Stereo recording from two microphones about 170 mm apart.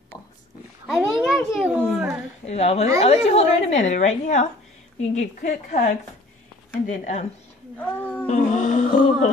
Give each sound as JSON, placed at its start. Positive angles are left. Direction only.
{"t": 0.8, "sound": "a child's voice", "side_deg": -5}
{"t": 2.4, "sound": "a woman's voice", "side_deg": 40}
{"t": 7.7, "sound": "speech", "side_deg": 10}
{"t": 8.3, "sound": "music", "side_deg": 45}